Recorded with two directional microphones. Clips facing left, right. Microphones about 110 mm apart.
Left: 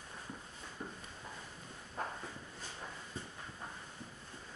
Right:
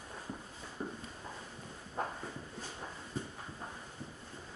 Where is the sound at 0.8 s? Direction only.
20° right (ahead or behind).